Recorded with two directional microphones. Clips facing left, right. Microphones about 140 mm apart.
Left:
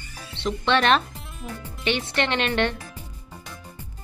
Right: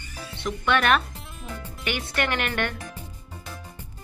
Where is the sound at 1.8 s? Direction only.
25° left (ahead or behind).